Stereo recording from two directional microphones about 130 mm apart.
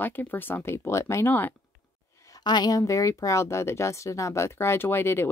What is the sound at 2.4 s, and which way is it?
Speech, 35° left (ahead or behind).